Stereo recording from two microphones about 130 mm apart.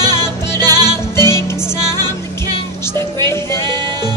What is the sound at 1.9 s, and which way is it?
Music, 30° right (ahead or behind).